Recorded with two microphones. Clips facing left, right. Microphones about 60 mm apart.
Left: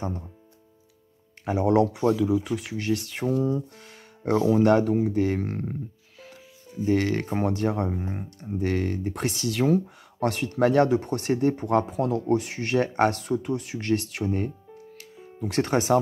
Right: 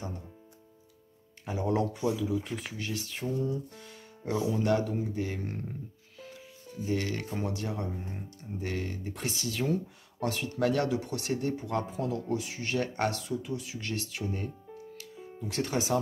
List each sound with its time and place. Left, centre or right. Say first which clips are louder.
1.4 s speech: left 8 dB; left
2.2 s speech: left 7 dB; left
2.7 s speech: left 9 dB; left
5.4 s speech: left 7 dB; left
6.8 s speech: left 8 dB; left
10.6 s speech: left 8 dB; left
11.8 s speech: left 7 dB; left
12.7 s speech: left 8 dB; left
13.1 s speech: left 7 dB; left